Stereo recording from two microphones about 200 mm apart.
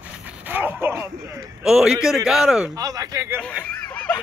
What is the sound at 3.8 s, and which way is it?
Snicker, 5° left (ahead or behind).